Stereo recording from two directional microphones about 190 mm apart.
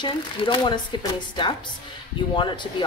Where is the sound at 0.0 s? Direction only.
25° left (ahead or behind).